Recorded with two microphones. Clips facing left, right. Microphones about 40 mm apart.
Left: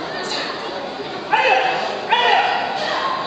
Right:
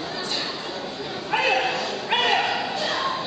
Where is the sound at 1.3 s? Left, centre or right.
Centre.